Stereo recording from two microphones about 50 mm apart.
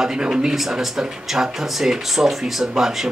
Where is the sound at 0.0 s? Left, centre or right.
Centre.